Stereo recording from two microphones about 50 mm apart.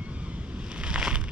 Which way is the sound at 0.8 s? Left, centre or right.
Centre.